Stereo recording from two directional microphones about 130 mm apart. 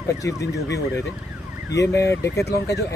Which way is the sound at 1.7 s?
25° left (ahead or behind).